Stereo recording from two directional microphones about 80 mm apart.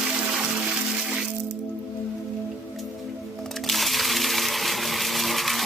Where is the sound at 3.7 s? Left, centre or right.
Centre.